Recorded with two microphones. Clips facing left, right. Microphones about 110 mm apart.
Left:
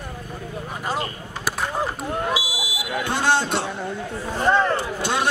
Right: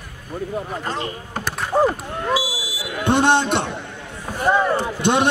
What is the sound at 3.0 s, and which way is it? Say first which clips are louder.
Speech: right 5 dB; 20° right (ahead or behind).